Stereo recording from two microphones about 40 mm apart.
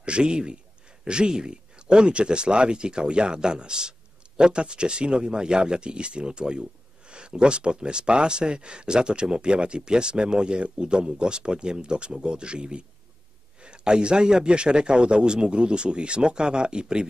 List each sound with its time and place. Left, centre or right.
0.0 s a man's voice: right